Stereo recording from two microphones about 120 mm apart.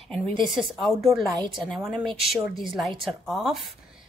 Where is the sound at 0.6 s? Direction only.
Centre (ahead or behind).